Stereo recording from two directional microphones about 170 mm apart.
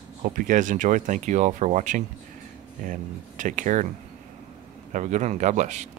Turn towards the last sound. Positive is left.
turn(degrees=-45)  # may be behind; listen again after turning